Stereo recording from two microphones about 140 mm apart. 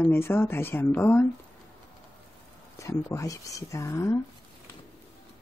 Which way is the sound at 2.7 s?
20° left (ahead or behind).